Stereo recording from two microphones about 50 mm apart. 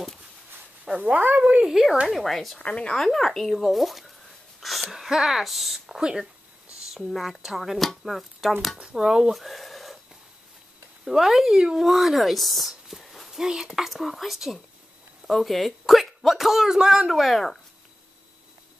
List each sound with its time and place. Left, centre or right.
0.8 s speech: centre
1.6 s speech: centre
2.6 s a woman's voice: left
3.1 s speech: centre
4.6 s a sound: centre
4.9 s speech: centre
5.9 s speech: centre
7.1 s speech: centre
8.8 s speech: centre
9.3 s a sound: centre
11.1 s speech: centre